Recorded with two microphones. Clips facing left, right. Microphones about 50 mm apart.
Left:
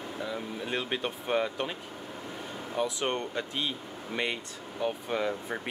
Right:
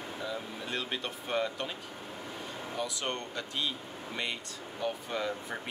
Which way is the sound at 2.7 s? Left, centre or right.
Centre.